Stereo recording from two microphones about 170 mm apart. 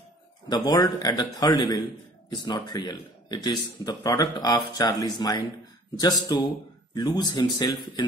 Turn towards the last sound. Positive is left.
turn(degrees=25)  # may be behind; listen again after turning